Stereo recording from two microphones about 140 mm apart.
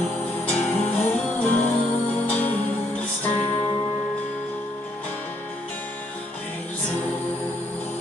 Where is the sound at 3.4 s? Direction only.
30° left (ahead or behind).